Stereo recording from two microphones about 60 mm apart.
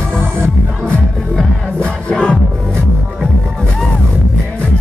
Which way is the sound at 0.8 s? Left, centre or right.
Centre.